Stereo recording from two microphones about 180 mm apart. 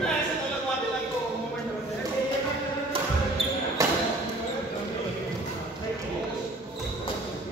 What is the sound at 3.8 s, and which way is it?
Basketball bounce, 15° right (ahead or behind).